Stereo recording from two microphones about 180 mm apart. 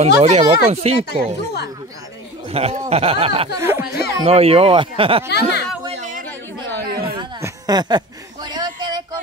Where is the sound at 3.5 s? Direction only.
15° right (ahead or behind).